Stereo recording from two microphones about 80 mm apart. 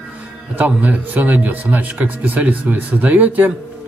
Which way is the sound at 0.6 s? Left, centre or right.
Centre.